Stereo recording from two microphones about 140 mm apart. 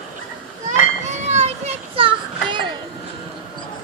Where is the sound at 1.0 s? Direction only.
55° right (ahead or behind); by 2.7 s 35° right (ahead or behind).